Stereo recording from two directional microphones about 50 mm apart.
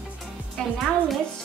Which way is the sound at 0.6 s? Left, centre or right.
Centre.